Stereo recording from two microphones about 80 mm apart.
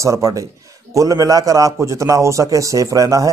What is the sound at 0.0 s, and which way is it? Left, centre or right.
A man's voice, right.